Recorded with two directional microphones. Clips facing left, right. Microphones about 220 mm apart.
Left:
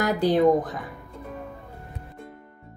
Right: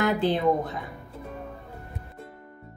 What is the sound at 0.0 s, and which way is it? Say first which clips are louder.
Speech: left 1 dB; 40° left (ahead or behind).